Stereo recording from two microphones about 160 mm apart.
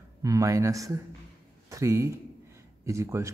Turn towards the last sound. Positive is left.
turn(degrees=-20)  # may be behind; listen again after turning